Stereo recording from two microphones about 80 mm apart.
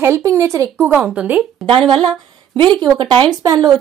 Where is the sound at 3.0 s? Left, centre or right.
Right.